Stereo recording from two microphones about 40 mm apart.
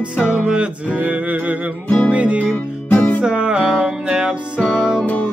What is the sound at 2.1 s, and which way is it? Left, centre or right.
Music, right.